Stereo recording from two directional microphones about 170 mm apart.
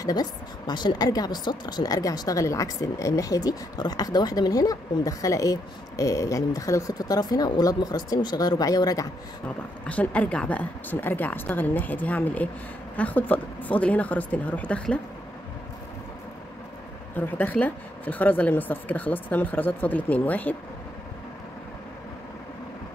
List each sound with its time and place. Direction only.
0.0 s speech: 25° left (ahead or behind)
9.8 s a woman's voice: 10° left (ahead or behind)
17.2 s a woman's voice: 10° left (ahead or behind)